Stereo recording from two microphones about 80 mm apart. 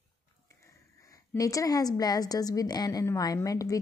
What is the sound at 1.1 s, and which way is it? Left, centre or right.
A woman's voice, left.